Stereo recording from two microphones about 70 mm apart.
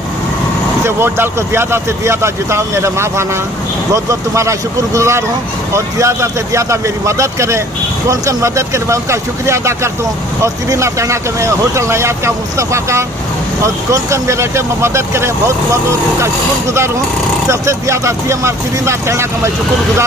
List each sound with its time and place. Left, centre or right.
0.8 s speech: right
17.5 s speech: right